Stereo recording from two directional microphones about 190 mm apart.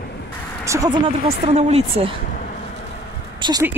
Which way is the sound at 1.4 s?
35° right (ahead or behind).